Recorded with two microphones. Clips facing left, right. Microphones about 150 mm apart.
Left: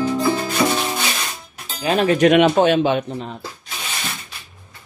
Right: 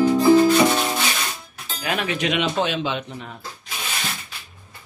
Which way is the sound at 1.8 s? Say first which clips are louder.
Left 9 dB; 35° left (ahead or behind).